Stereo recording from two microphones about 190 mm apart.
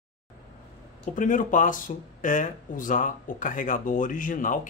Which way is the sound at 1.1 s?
45° left (ahead or behind).